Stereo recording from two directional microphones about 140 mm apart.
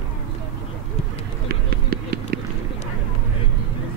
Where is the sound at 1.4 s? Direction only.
90° right.